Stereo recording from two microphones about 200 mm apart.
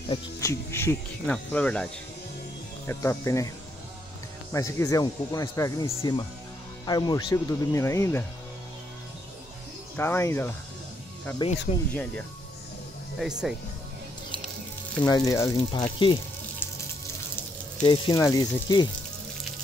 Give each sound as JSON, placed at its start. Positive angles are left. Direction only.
{"t": 0.1, "sound": "speech", "side_deg": 15}
{"t": 2.9, "sound": "speech", "side_deg": 15}
{"t": 9.9, "sound": "speech", "side_deg": 10}
{"t": 11.9, "sound": "speech", "side_deg": 5}
{"t": 15.0, "sound": "speech", "side_deg": 15}
{"t": 15.8, "sound": "speech", "side_deg": 25}
{"t": 17.8, "sound": "speech", "side_deg": 20}